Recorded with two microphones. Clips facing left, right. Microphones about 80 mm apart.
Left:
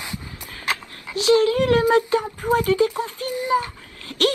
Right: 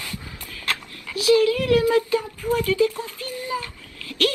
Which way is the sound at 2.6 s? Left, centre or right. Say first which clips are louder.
Left 2 dB; left.